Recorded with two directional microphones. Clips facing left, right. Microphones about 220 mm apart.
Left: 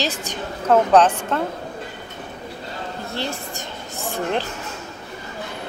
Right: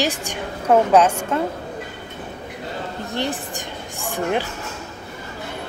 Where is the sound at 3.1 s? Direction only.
15° right (ahead or behind).